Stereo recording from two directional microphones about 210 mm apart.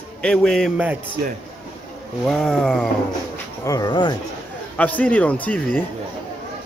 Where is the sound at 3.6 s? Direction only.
15° left (ahead or behind).